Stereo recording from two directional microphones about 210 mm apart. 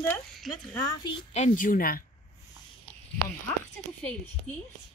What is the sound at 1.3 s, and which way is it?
Speech, 35° left (ahead or behind).